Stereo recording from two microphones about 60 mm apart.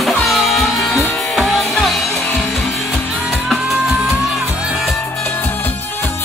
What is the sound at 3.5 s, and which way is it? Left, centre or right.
Music, centre.